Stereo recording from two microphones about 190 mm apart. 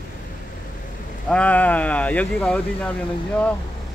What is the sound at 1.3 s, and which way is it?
Speech, 5° left (ahead or behind).